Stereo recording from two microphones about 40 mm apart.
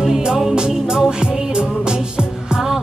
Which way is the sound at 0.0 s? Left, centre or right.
Centre.